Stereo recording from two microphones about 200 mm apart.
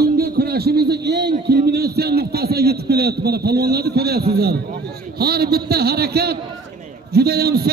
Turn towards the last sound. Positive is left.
turn(degrees=-50)  # may be behind; listen again after turning